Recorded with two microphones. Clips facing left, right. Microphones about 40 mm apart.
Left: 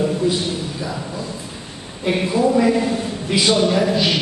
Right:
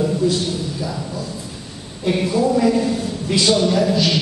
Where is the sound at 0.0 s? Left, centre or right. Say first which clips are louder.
Even; centre.